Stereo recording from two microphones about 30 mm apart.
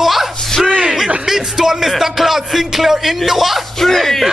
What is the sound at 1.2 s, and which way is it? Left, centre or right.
Speech, centre.